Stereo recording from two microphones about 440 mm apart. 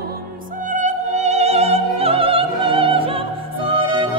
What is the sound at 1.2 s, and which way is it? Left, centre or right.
Opera, centre.